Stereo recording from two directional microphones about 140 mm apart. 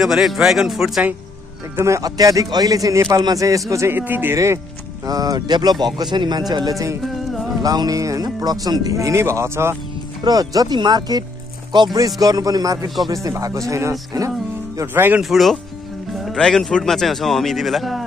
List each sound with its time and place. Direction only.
0.0 s speech: centre (ahead or behind)
1.8 s a man's voice: 20° right (ahead or behind)
15.2 s speech: centre (ahead or behind)